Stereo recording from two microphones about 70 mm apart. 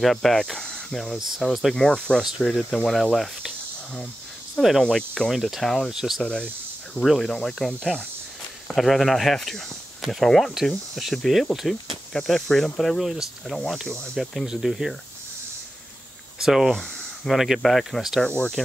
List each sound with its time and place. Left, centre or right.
0.0 s speech: centre
1.8 s speech: centre
6.2 s speech: centre
16.4 s speech: centre
16.7 s a sound: centre
17.3 s speech: centre
18.2 s speech: centre